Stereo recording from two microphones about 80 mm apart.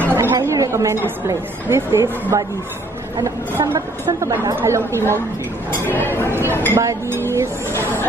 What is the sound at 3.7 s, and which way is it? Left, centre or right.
A woman's voice, right.